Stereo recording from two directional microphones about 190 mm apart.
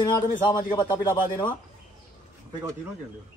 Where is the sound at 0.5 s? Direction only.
20° left (ahead or behind).